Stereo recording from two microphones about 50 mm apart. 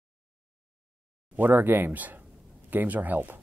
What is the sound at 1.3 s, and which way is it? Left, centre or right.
Speech, right.